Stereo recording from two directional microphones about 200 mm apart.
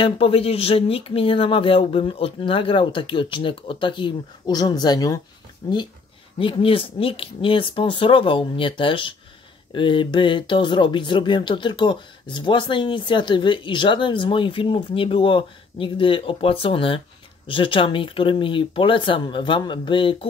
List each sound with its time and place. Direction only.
0.0 s speech: 30° left (ahead or behind)